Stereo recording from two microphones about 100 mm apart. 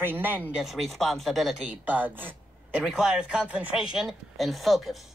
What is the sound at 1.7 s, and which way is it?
Speech, 15° right (ahead or behind).